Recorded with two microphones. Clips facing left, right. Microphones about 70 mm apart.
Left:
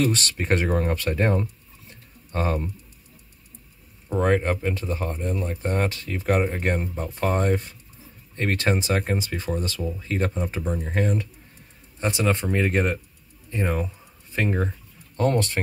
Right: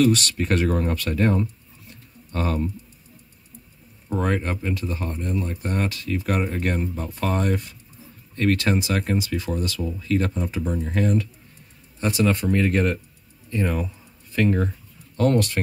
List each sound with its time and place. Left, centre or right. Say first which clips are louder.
0.0 s speech: right 4 dB; left
4.2 s speech: left 4 dB; left
13.5 s a sound: right 1 dB; left
15.3 s speech: right 2 dB; left